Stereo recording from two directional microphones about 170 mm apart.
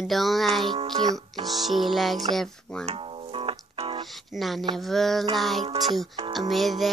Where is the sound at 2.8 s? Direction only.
35° right (ahead or behind).